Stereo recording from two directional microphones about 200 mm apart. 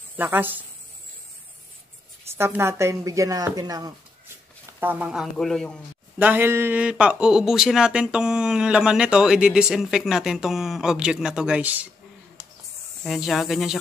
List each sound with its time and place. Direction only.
0.2 s a woman's voice: 10° right (ahead or behind)
2.3 s a woman's voice: 10° right (ahead or behind)
6.1 s speech: 10° right (ahead or behind)
13.0 s speech: centre (ahead or behind)